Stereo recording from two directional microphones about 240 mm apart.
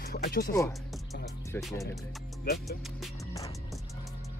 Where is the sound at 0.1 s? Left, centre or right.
Left.